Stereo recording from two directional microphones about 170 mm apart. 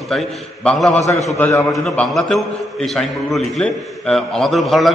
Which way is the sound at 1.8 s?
Centre (ahead or behind).